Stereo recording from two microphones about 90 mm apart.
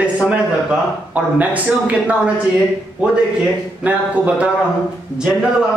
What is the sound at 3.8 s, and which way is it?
Speech, 15° right (ahead or behind).